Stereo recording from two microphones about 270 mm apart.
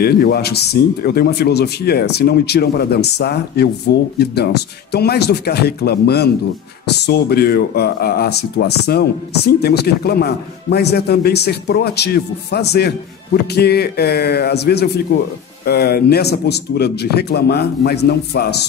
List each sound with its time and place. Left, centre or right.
0.0 s speech: left